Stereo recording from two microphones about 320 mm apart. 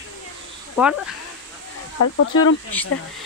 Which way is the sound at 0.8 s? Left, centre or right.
Centre.